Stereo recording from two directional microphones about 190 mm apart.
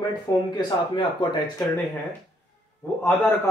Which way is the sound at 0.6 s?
25° left (ahead or behind).